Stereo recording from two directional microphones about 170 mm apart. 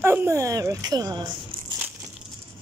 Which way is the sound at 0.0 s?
15° right (ahead or behind).